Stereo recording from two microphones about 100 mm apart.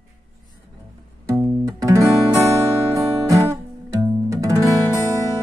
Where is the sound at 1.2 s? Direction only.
30° right (ahead or behind).